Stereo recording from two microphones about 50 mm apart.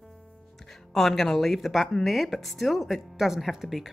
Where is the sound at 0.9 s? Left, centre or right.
Centre.